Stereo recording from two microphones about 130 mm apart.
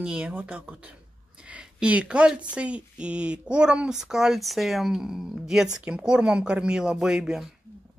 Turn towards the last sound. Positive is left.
turn(degrees=-5)  # may be behind; listen again after turning